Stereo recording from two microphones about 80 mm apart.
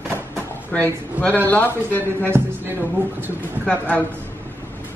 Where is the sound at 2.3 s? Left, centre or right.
Right.